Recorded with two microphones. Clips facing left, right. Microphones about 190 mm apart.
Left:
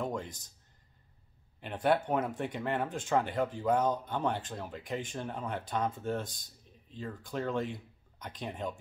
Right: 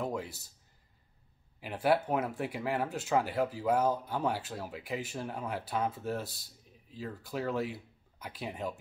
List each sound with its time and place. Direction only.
0.0 s speech: 5° right (ahead or behind)
1.6 s speech: 5° right (ahead or behind)